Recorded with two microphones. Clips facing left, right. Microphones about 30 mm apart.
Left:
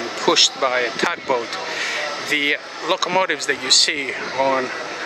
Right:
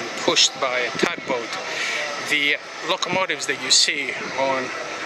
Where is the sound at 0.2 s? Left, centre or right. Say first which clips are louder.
Left 3 dB; centre.